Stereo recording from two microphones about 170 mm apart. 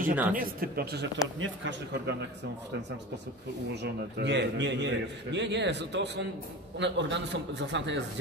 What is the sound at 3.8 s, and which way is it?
A man's voice, 90° right.